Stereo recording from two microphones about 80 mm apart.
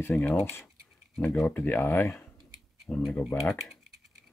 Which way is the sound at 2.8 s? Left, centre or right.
Centre.